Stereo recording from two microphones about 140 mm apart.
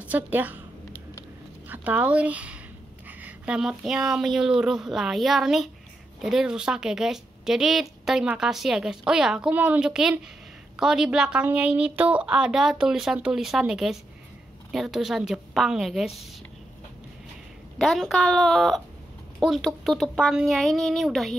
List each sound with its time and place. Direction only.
0.0 s a woman's voice: 10° right (ahead or behind)
1.7 s speech: 10° right (ahead or behind)
17.7 s speech: centre (ahead or behind)